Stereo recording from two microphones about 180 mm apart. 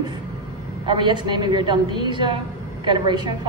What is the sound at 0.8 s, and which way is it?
A woman's voice, 25° right (ahead or behind).